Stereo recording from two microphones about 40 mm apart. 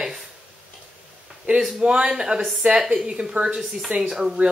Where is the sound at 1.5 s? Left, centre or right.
Right.